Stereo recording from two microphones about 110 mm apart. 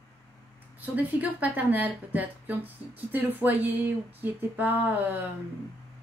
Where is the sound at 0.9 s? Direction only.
15° right (ahead or behind).